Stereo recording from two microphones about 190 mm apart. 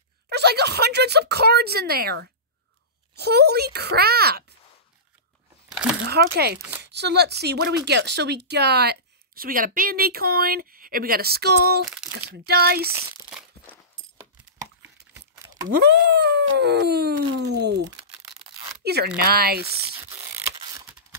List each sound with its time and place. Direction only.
0.3 s speech: 60° right (ahead or behind)
5.7 s crumpling: 5° right (ahead or behind)
6.0 s speech: 55° right (ahead or behind)
12.9 s crumpling: 5° right (ahead or behind)
15.7 s speech: 60° right (ahead or behind)
17.9 s tearing: 20° right (ahead or behind)
19.1 s speech: 55° right (ahead or behind)
20.0 s a sound: 15° right (ahead or behind)
20.5 s mechanisms: 15° right (ahead or behind)